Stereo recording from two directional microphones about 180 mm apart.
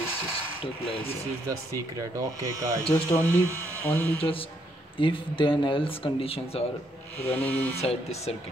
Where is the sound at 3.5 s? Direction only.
10° left (ahead or behind).